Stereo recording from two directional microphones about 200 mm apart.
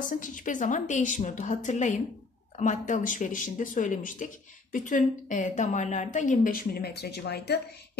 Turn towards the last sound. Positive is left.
turn(degrees=55)  # may be behind; listen again after turning